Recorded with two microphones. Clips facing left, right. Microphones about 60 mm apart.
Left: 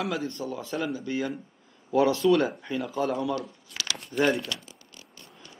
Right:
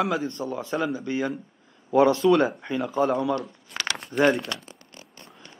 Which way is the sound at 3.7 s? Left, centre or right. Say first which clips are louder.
Right 6 dB; right.